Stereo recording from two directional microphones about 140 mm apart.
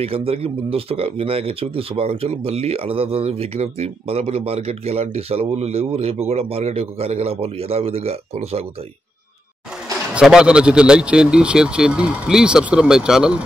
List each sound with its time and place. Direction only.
0.0 s speech: 45° right (ahead or behind)
10.1 s speech: 5° right (ahead or behind)